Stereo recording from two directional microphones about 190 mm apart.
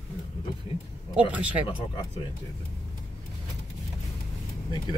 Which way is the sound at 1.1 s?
5° right (ahead or behind).